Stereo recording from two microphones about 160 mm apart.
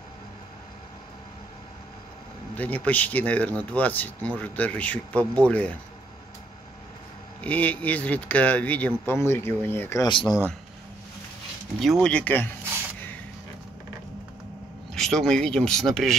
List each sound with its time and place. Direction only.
2.5 s speech: 10° left (ahead or behind)
7.4 s speech: 10° left (ahead or behind)
10.0 s speech: 30° left (ahead or behind)
12.0 s speech: 5° left (ahead or behind)
15.0 s speech: 5° left (ahead or behind)